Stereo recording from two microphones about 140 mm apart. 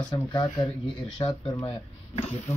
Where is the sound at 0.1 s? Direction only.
30° left (ahead or behind).